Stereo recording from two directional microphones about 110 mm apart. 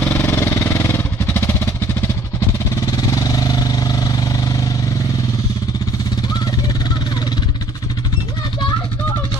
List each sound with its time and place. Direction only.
0.2 s vehicle: 25° left (ahead or behind)
2.9 s vehicle: 35° left (ahead or behind)